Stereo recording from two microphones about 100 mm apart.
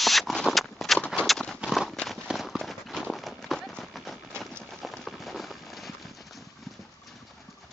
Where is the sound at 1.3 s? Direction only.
5° left (ahead or behind).